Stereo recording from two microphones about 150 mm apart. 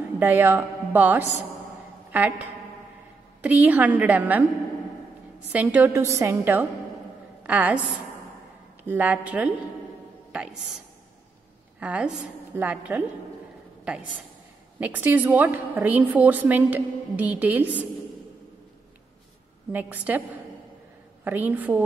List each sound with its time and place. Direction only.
0.2 s a woman's voice: 15° right (ahead or behind)
2.0 s a sound: 10° right (ahead or behind)
3.4 s a woman's voice: 10° right (ahead or behind)
5.5 s a woman's voice: 10° right (ahead or behind)
8.8 s a woman's voice: 10° right (ahead or behind)
10.3 s music: 5° right (ahead or behind)
11.8 s a woman's voice: 10° right (ahead or behind)
14.8 s a woman's voice: 10° right (ahead or behind)
19.7 s a woman's voice: 10° right (ahead or behind)